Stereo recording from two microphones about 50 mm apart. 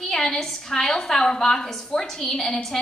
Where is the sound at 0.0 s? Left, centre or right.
Centre.